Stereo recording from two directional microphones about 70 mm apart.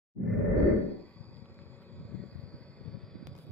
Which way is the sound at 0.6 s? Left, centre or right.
Left.